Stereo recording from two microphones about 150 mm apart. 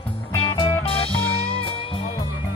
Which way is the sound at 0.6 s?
40° left (ahead or behind).